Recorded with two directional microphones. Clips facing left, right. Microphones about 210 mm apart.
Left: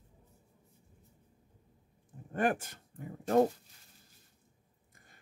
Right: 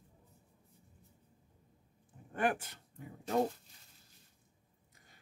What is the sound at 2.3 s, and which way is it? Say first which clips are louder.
Speech: left 3 dB; 40° left (ahead or behind).